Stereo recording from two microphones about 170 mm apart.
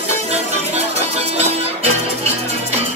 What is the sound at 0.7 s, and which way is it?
Music, 35° right (ahead or behind).